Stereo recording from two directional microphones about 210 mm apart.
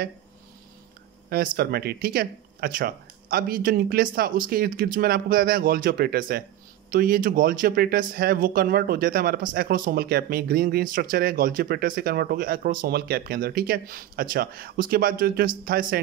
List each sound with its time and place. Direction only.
1.3 s speech: 45° right (ahead or behind)